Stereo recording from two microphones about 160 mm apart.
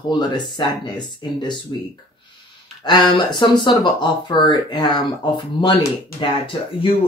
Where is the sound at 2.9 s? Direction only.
30° left (ahead or behind).